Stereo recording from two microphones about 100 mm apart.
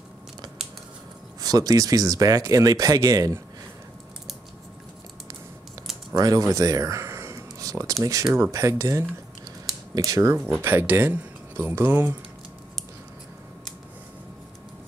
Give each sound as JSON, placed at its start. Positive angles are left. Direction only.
{"t": 1.4, "sound": "speech", "side_deg": -40}
{"t": 6.1, "sound": "speech", "side_deg": -40}
{"t": 10.6, "sound": "speech", "side_deg": -20}